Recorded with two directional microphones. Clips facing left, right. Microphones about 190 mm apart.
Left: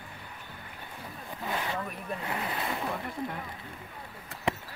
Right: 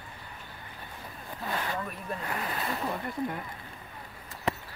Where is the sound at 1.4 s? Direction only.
15° left (ahead or behind).